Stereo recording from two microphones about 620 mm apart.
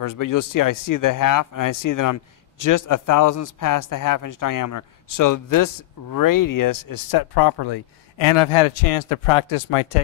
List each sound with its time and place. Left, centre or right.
0.0 s speech: left